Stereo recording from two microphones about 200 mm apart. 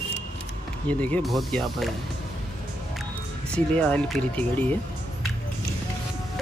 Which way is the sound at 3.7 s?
5° left (ahead or behind).